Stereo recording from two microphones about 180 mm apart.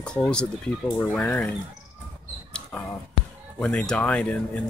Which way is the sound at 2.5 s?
5° left (ahead or behind).